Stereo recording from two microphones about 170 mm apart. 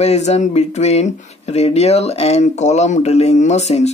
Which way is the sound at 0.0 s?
40° left (ahead or behind).